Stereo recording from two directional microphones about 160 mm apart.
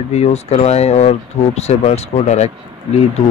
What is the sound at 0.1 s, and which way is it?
Speech, 40° left (ahead or behind).